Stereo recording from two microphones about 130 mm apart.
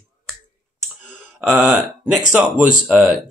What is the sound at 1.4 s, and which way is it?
Speech, 15° right (ahead or behind).